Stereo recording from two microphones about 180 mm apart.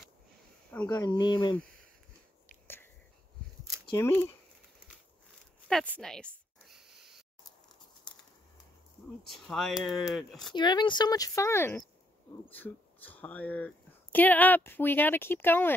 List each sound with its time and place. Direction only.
0.8 s speech: 20° left (ahead or behind)
3.8 s speech: 15° left (ahead or behind)
5.7 s a sound: 5° left (ahead or behind)
9.3 s speech: centre (ahead or behind)
10.5 s speech: 25° left (ahead or behind)